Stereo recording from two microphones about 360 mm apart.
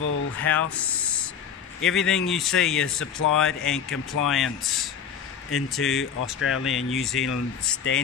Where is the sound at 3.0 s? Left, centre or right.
Left.